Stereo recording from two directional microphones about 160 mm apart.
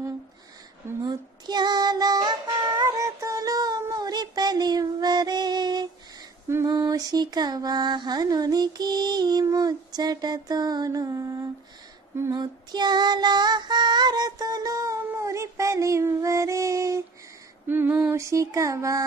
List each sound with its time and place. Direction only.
1.0 s child singing: 25° right (ahead or behind)
2.8 s synthetic singing: 20° right (ahead or behind)
6.5 s a sound: 20° right (ahead or behind)
12.2 s female singing: 20° right (ahead or behind)